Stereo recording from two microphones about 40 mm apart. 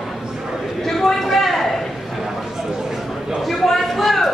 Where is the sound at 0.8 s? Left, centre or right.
Centre.